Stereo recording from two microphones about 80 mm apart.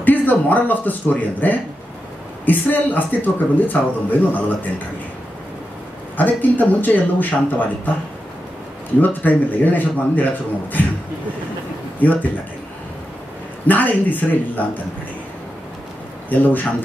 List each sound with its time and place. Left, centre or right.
0.0 s a man's voice: left
6.1 s a man's voice: left
9.0 s a man's voice: left
12.0 s a man's voice: left
13.7 s a man's voice: left
16.3 s a man's voice: left